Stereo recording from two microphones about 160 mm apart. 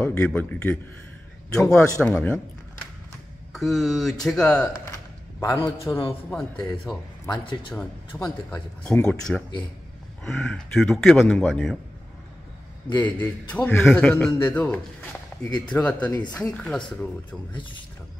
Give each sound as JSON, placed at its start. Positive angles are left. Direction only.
{"t": 0.0, "sound": "a man's voice", "side_deg": 15}
{"t": 3.5, "sound": "a man's voice", "side_deg": 0}
{"t": 4.6, "sound": "a man's voice", "side_deg": 20}
{"t": 6.3, "sound": "a man's voice", "side_deg": 5}
{"t": 7.3, "sound": "a man's voice", "side_deg": 30}
{"t": 8.2, "sound": "a man's voice", "side_deg": 15}
{"t": 12.9, "sound": "speech", "side_deg": 10}
{"t": 16.1, "sound": "speech", "side_deg": 25}
{"t": 16.3, "sound": "speech", "side_deg": 5}